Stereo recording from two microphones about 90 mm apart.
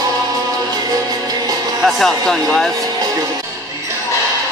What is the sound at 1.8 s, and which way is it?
Speech, centre (ahead or behind).